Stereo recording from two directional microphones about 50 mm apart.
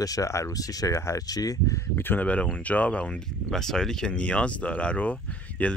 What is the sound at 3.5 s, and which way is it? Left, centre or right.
Speech, centre.